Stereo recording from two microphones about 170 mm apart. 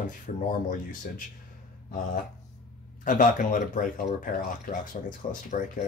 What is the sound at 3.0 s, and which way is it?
Speech, 50° left (ahead or behind).